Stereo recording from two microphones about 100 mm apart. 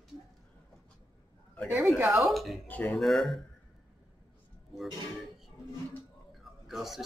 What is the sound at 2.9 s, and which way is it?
Speech, centre (ahead or behind).